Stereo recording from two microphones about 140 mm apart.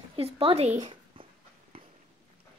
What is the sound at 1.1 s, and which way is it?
Dog, 40° right (ahead or behind).